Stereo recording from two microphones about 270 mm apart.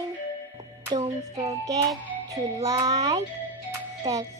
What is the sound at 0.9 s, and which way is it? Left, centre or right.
Music, right.